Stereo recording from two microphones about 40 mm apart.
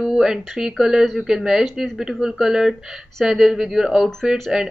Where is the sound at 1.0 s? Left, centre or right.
Centre.